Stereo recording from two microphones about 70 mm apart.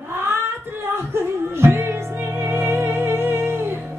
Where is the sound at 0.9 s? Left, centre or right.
Right.